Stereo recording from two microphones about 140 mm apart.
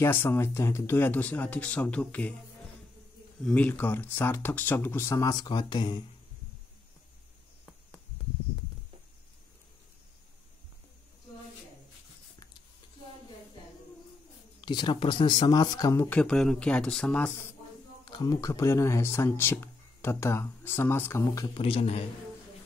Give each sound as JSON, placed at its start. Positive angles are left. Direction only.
{"t": 0.0, "sound": "speech", "side_deg": 15}
{"t": 3.4, "sound": "speech", "side_deg": 10}
{"t": 14.6, "sound": "speech", "side_deg": 30}
{"t": 16.2, "sound": "speech", "side_deg": 5}
{"t": 18.0, "sound": "speech", "side_deg": 30}
{"t": 21.5, "sound": "a man's voice", "side_deg": 45}